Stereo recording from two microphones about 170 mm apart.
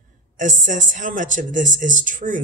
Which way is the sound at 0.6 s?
50° right (ahead or behind).